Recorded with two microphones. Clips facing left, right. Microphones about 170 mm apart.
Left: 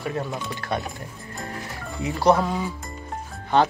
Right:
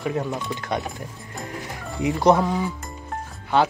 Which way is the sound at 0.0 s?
15° right (ahead or behind).